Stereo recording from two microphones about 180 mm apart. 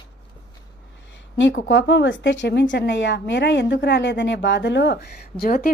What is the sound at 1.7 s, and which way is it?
A woman's voice, 90° left.